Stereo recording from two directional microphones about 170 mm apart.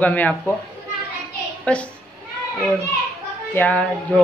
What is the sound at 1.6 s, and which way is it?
Speech, 5° left (ahead or behind).